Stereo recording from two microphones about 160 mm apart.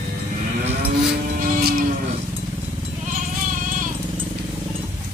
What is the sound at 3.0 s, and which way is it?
Sheep, 55° right (ahead or behind).